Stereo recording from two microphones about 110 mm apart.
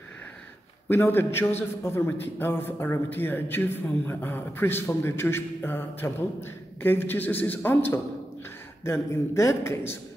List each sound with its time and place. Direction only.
0.8 s speech: 20° left (ahead or behind)